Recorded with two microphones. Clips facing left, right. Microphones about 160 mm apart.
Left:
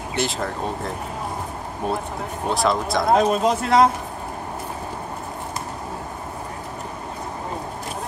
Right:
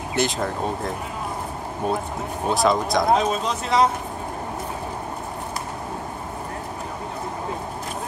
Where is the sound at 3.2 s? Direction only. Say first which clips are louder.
Left 5 dB; 55° left (ahead or behind).